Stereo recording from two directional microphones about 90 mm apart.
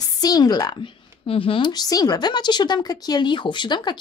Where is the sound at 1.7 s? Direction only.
45° left (ahead or behind).